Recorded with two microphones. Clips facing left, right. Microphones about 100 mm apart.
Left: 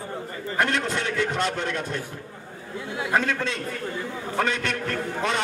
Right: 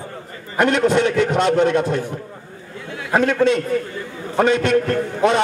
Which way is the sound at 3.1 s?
20° right (ahead or behind).